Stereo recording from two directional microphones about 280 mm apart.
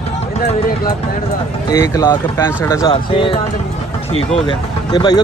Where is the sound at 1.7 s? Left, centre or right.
Centre.